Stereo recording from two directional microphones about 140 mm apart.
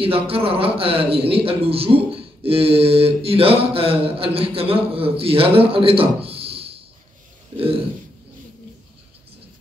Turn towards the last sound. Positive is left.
turn(degrees=-40)  # may be behind; listen again after turning